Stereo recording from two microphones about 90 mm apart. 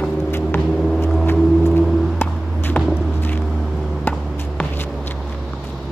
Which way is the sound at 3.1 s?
20° left (ahead or behind).